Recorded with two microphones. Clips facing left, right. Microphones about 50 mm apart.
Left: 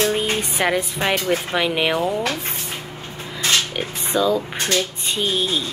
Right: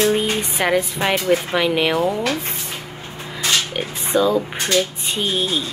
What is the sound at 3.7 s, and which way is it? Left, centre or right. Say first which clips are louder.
A woman's voice: right 2 dB; centre.